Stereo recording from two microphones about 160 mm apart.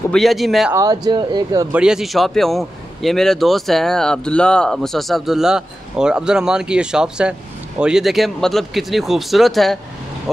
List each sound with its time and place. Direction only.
0.1 s a man's voice: centre (ahead or behind)
0.7 s speech: 25° right (ahead or behind)
1.7 s a man's voice: 5° right (ahead or behind)